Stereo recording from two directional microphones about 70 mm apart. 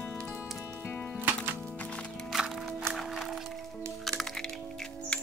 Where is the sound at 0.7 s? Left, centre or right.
Left.